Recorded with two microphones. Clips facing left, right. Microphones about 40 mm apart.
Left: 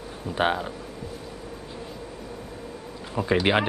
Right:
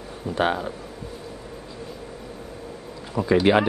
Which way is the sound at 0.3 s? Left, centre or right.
Centre.